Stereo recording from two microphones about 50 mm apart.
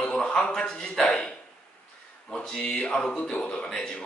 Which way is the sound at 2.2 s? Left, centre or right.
Centre.